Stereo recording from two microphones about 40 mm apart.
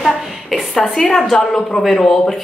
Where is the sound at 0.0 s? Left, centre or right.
Centre.